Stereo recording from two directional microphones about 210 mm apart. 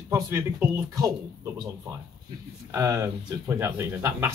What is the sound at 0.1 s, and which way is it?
Speech, 15° right (ahead or behind).